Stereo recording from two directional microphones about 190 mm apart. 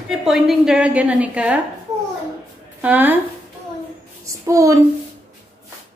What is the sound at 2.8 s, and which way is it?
Speech, 10° right (ahead or behind).